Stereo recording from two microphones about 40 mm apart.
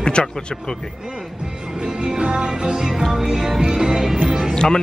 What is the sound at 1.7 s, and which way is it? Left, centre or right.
Music, centre.